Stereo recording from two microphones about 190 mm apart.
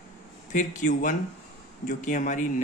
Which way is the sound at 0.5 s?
40° left (ahead or behind).